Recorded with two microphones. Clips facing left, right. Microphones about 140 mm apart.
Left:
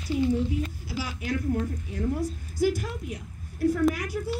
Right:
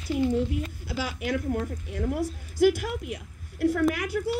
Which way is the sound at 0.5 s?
60° right (ahead or behind).